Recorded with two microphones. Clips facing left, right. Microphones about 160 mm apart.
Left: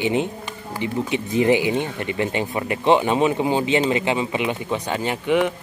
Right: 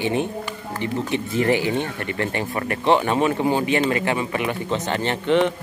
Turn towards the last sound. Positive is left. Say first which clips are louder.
# right 1 dB
turn(degrees=10)  # may be behind; listen again after turning